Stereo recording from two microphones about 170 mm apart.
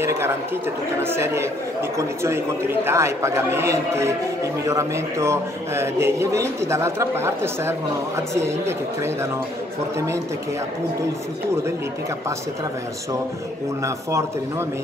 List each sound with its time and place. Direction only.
1.0 s a man's voice: 15° right (ahead or behind)